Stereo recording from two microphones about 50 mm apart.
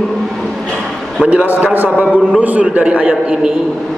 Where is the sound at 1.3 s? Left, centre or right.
Right.